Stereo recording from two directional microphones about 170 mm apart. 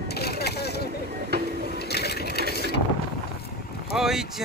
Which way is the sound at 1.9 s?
70° left (ahead or behind).